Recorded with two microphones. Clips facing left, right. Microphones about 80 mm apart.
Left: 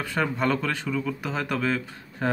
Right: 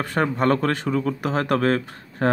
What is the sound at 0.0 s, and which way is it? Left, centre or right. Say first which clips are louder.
Speech: right 4 dB; right.